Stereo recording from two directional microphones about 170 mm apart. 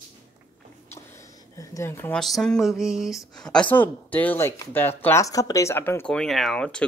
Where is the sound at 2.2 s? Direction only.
Centre (ahead or behind).